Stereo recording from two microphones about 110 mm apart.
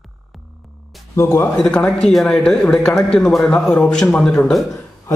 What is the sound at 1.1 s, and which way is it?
Speech, 25° left (ahead or behind).